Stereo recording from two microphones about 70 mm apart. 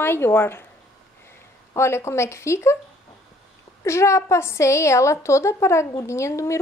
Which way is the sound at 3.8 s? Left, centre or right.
Left.